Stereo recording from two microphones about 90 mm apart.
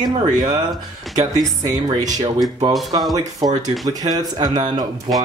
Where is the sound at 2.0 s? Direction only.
45° right (ahead or behind).